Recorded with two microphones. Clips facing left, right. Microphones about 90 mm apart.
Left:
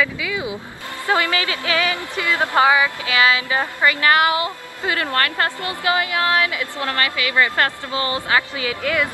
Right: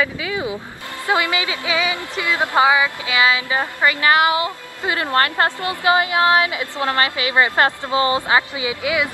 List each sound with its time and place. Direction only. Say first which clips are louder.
0.0 s a woman's voice: right 1 dB; 30° right (ahead or behind)
1.0 s a woman's voice: even; 15° right (ahead or behind)